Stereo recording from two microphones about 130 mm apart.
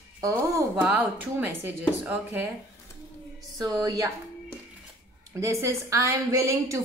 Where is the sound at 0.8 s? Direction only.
10° right (ahead or behind).